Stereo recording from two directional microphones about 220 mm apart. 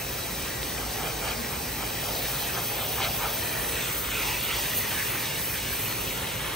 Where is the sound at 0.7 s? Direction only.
Centre (ahead or behind).